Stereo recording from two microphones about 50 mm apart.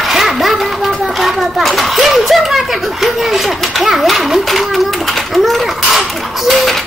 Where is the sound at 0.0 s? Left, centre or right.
Centre.